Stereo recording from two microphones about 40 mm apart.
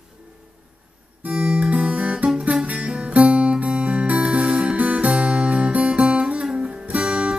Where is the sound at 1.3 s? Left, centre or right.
Right.